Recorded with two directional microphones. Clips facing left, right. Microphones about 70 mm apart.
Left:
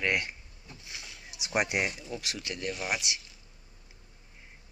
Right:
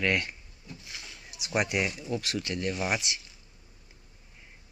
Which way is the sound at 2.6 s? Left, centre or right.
Centre.